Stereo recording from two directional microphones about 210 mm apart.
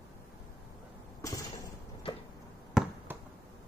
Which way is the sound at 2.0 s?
25° left (ahead or behind).